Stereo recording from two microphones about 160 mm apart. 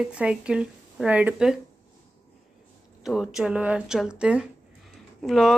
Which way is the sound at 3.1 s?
5° right (ahead or behind).